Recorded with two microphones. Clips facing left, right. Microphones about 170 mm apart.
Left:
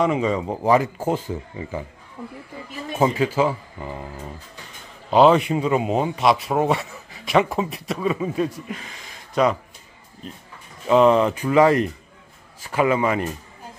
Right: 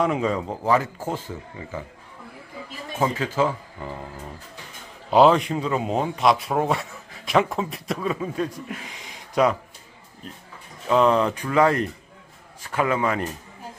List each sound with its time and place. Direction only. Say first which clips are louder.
0.0 s a man's voice: left 2 dB; centre (ahead or behind)
0.5 s speech: left 3 dB; 15° left (ahead or behind)
3.0 s speech: left 3 dB; 10° left (ahead or behind)
5.1 s a man's voice: left 1 dB; centre (ahead or behind)
8.7 s speech: right 1 dB; 10° right (ahead or behind)
10.9 s a man's voice: left 3 dB; 5° left (ahead or behind)